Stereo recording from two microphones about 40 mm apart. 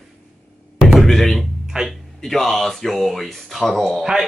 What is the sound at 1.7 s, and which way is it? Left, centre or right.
Speech, right.